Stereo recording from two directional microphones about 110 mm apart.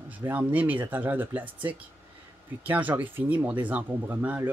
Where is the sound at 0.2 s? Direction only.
15° right (ahead or behind).